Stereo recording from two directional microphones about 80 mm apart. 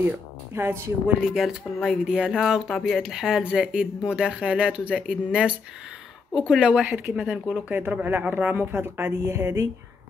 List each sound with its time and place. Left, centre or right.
0.6 s speech: right
1.3 s speech: centre
7.7 s speech: right